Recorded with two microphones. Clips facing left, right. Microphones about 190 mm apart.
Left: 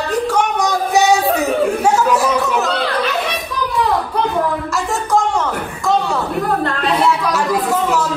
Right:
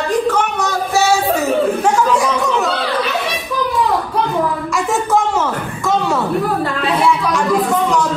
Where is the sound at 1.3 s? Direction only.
Centre (ahead or behind).